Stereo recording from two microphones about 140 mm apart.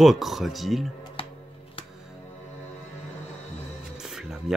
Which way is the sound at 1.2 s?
40° left (ahead or behind).